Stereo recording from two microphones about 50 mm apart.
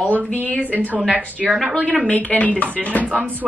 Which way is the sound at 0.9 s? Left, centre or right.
Right.